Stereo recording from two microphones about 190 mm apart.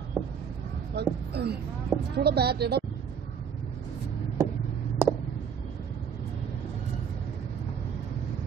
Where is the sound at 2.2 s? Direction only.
60° right (ahead or behind).